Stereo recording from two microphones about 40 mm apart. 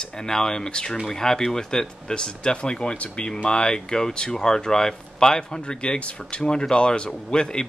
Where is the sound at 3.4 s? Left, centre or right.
Left.